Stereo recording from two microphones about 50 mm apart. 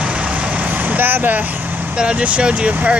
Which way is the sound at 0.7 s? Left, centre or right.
Right.